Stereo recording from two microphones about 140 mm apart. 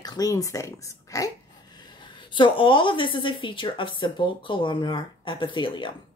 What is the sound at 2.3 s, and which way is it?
A woman's voice, 35° left (ahead or behind).